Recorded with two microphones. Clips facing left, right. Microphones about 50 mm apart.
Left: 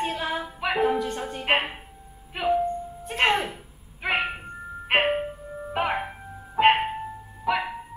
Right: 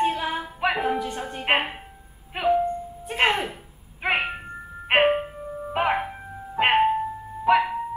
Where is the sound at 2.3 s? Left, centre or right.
Centre.